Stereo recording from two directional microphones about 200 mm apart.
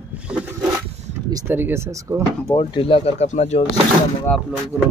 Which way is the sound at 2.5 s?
25° left (ahead or behind).